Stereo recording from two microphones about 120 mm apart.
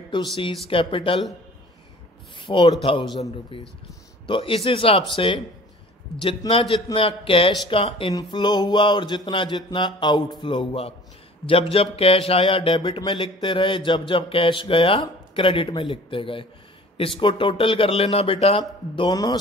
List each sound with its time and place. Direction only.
0.1 s speech: 45° left (ahead or behind)
2.3 s a man's voice: 45° left (ahead or behind)
6.5 s speech: 50° left (ahead or behind)
8.1 s speech: 35° left (ahead or behind); by 18.6 s 50° left (ahead or behind)
18.6 s speech: 40° left (ahead or behind)